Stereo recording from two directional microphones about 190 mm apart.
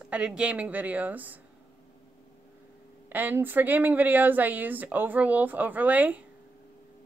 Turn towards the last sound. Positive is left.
turn(degrees=-10)  # may be behind; listen again after turning